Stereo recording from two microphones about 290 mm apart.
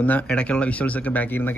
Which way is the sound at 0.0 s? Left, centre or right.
Centre.